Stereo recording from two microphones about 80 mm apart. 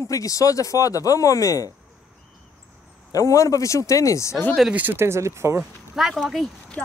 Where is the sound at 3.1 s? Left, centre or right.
Left.